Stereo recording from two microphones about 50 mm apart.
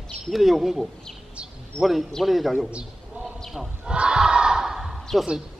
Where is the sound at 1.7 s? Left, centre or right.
Right.